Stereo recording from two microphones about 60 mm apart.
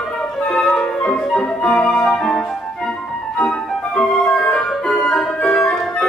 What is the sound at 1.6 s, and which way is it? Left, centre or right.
Music, centre.